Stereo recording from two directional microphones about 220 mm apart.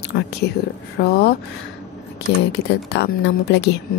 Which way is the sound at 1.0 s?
45° left (ahead or behind).